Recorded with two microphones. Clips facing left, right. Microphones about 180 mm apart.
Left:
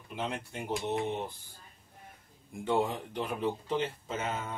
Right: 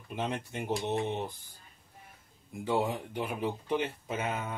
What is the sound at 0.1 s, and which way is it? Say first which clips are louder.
Speech: right 2 dB; 20° right (ahead or behind).